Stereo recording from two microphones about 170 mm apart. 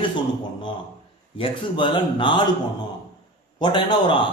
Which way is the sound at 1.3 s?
30° left (ahead or behind).